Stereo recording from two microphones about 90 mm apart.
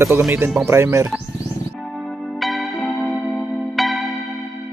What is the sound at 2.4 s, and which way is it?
Music, centre (ahead or behind).